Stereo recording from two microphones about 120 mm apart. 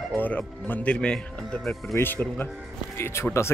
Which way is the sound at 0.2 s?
15° left (ahead or behind).